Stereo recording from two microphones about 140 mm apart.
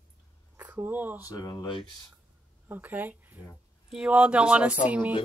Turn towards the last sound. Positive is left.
turn(degrees=-10)  # may be behind; listen again after turning